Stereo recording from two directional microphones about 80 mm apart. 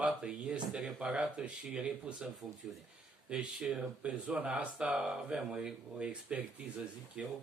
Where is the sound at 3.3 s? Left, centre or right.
Centre.